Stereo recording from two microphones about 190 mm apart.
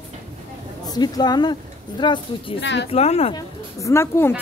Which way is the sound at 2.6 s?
65° left (ahead or behind).